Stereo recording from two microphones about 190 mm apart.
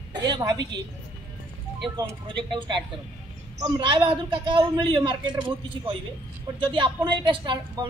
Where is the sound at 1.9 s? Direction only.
25° right (ahead or behind).